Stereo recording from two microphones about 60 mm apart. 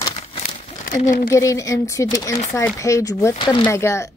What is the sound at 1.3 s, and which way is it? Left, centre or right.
A woman's voice, left.